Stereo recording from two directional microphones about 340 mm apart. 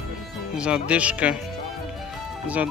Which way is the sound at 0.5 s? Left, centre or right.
Centre.